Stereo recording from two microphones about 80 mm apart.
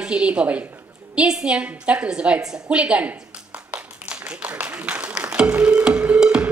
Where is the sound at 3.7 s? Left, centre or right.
Centre.